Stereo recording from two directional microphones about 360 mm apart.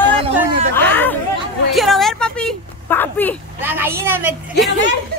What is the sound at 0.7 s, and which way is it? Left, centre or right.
A woman's voice, centre.